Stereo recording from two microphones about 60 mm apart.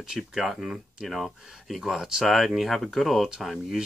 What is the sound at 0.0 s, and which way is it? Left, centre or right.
Speech, centre.